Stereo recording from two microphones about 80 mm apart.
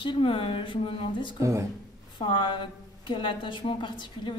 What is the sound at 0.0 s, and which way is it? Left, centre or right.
Speech, left.